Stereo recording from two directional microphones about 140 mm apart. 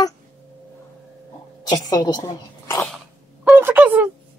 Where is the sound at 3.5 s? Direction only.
10° right (ahead or behind).